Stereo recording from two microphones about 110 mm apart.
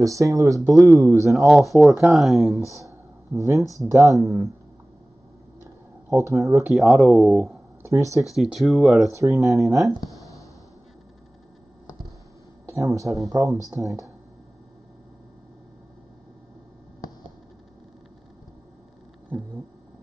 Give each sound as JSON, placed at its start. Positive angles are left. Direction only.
{"t": 0.0, "sound": "speech", "side_deg": -30}
{"t": 1.5, "sound": "speech", "side_deg": 0}
{"t": 3.3, "sound": "speech", "side_deg": -30}
{"t": 5.6, "sound": "a sound", "side_deg": -25}
{"t": 6.7, "sound": "speech", "side_deg": 0}
{"t": 7.8, "sound": "speech", "side_deg": -25}
{"t": 8.4, "sound": "speech", "side_deg": 0}
{"t": 9.1, "sound": "speech", "side_deg": -30}
{"t": 12.6, "sound": "speech", "side_deg": -30}